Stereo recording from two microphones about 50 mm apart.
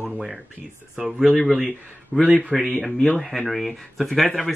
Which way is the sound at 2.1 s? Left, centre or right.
Right.